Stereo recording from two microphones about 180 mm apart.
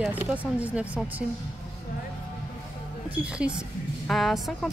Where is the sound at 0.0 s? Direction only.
10° right (ahead or behind).